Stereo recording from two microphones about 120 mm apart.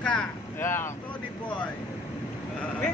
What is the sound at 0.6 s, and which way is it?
Speech, 20° left (ahead or behind).